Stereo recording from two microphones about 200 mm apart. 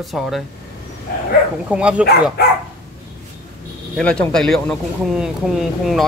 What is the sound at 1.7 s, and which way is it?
Speech, 5° right (ahead or behind).